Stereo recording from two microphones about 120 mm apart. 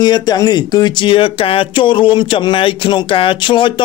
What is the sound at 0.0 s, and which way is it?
Speech, 35° left (ahead or behind).